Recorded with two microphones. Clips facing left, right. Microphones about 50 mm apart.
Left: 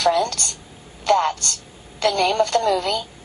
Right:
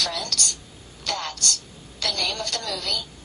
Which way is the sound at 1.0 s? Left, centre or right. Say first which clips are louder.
Left 11 dB; left.